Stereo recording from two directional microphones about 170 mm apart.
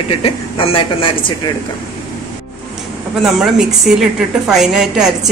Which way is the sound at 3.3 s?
Centre (ahead or behind).